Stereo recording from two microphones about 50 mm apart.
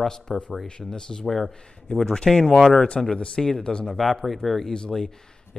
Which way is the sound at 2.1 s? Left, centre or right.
Centre.